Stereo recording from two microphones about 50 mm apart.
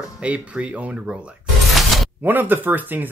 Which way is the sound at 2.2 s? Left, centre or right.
Right.